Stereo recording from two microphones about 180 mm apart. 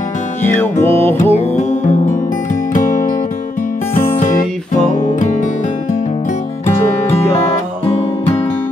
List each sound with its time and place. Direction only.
0.4 s music: 10° left (ahead or behind)
1.4 s music: 40° left (ahead or behind)
4.1 s music: 45° left (ahead or behind)